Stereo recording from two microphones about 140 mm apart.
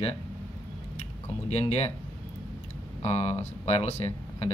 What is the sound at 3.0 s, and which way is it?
Speech, 50° left (ahead or behind).